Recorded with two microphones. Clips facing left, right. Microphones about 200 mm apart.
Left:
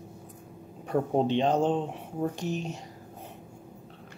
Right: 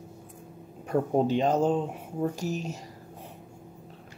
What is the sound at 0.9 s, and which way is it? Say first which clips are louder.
Speech: right 1 dB; 5° right (ahead or behind).